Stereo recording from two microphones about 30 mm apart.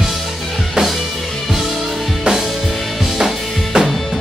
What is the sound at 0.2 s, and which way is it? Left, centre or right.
Music, centre.